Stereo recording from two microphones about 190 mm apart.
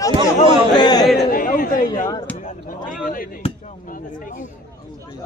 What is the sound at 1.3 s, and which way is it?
Chatter, 50° left (ahead or behind).